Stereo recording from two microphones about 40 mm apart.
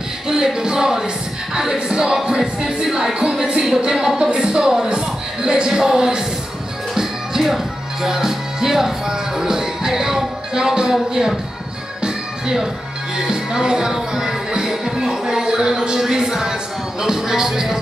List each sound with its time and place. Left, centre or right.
0.3 s music: centre